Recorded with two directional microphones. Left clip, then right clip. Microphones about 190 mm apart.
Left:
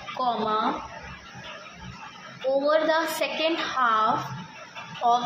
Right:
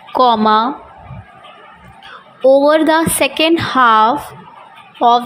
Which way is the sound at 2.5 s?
45° right (ahead or behind).